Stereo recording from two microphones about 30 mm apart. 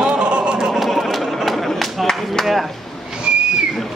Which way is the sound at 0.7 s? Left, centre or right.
Centre.